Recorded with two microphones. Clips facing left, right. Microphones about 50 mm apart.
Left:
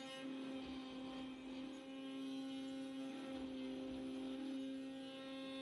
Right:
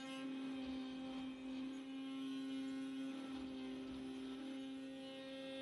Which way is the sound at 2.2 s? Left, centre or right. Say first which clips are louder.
Right 1 dB; right.